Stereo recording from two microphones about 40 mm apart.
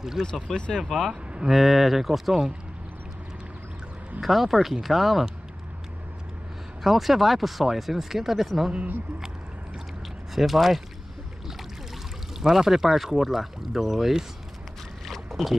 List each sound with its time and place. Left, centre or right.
0.2 s speech: centre
1.5 s speech: centre
4.2 s speech: centre
6.8 s speech: centre
10.3 s speech: centre
12.4 s speech: centre
15.0 s boat: centre